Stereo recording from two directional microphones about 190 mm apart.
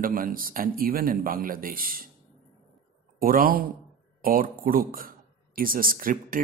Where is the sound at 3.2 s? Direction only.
50° right (ahead or behind).